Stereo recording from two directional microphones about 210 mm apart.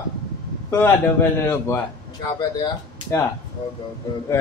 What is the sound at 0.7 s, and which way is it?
Speech, 10° left (ahead or behind).